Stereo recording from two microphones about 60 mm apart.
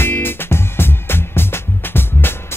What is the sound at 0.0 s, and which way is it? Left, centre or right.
Music, left.